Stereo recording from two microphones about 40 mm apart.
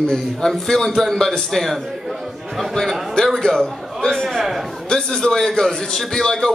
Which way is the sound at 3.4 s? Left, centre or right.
Centre.